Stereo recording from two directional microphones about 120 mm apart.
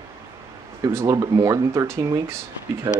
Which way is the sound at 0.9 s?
25° right (ahead or behind).